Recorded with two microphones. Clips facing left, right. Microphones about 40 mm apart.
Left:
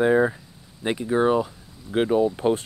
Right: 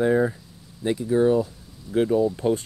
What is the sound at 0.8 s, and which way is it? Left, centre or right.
Speech, left.